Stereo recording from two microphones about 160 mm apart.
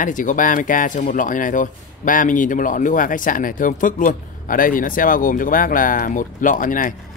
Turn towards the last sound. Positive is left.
turn(degrees=60)  # may be behind; listen again after turning